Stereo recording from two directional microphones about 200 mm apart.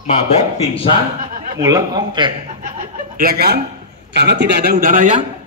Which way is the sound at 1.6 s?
20° right (ahead or behind).